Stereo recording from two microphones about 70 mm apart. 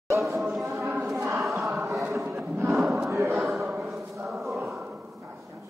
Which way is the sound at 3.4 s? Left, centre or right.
Centre.